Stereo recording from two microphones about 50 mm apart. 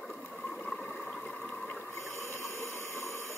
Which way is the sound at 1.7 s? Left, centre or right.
Left.